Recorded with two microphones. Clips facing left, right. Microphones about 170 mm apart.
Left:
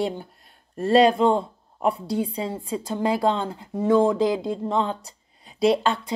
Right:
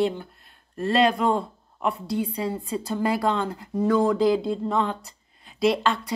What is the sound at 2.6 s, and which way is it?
A woman's voice, 15° left (ahead or behind).